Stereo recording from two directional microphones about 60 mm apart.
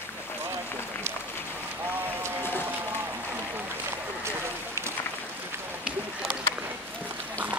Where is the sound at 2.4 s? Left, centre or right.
Left.